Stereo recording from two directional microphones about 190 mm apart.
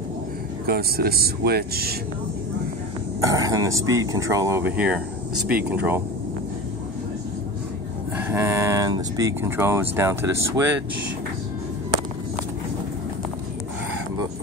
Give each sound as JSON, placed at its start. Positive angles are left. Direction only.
{"t": 0.7, "sound": "speech", "side_deg": -55}
{"t": 3.2, "sound": "speech", "side_deg": -20}
{"t": 8.3, "sound": "speech", "side_deg": -15}